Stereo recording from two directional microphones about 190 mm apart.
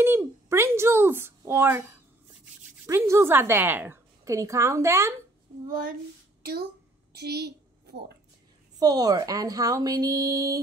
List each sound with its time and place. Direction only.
0.0 s a child's voice: 10° right (ahead or behind)
2.9 s a woman's voice: 15° right (ahead or behind)
5.7 s speech: 45° right (ahead or behind)
7.1 s a woman's voice: 60° right (ahead or behind)
8.7 s a woman's voice: 20° right (ahead or behind)